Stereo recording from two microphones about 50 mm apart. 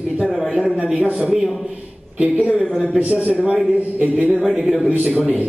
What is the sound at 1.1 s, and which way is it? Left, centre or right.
A man's voice, centre.